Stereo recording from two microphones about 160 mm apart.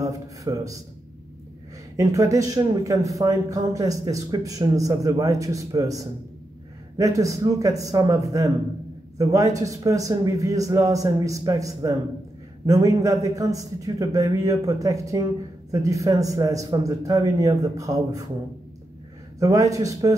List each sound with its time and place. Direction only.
0.0 s a man's voice: 20° right (ahead or behind)
2.0 s speech: 20° right (ahead or behind)
19.4 s speech: 20° right (ahead or behind)